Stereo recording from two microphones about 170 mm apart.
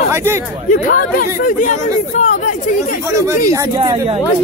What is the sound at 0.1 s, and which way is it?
Speech, 15° right (ahead or behind).